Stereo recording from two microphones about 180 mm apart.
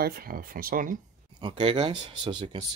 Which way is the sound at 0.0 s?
55° right (ahead or behind).